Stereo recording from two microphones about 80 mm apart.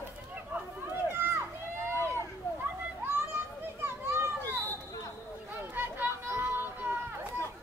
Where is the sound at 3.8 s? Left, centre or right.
Right.